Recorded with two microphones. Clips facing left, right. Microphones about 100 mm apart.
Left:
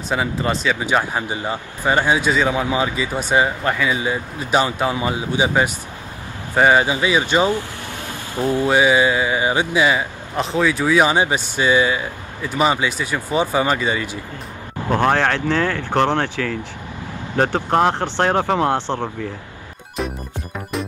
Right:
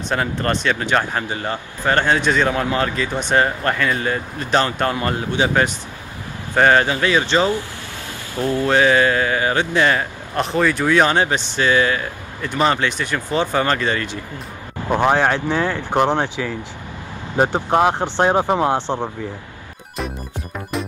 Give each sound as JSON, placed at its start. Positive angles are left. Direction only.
{"t": 0.1, "sound": "speech", "side_deg": 5}
{"t": 14.9, "sound": "speech", "side_deg": -15}